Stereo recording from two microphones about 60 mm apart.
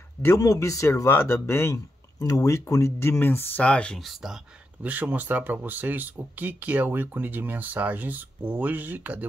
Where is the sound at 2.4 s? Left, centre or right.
Left.